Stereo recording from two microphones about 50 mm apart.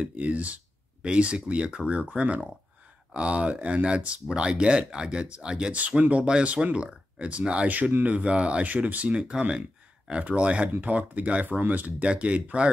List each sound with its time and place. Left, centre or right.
0.0 s speech: right
5.8 s speech: right
7.6 s speech: right
9.1 s speech: centre